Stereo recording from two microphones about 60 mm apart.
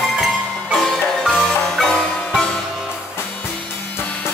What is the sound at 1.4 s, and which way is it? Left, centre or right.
Music, centre.